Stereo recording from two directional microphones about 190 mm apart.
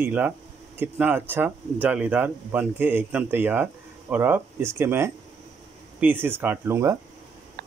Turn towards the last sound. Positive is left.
turn(degrees=-15)  # may be behind; listen again after turning